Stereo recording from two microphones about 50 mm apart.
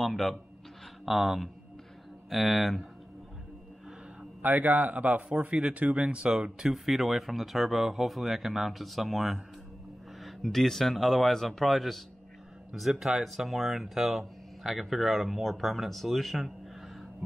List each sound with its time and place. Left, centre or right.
0.0 s speech: centre
4.4 s speech: right
4.9 s speech: right
6.3 s speech: centre
13.0 s speech: centre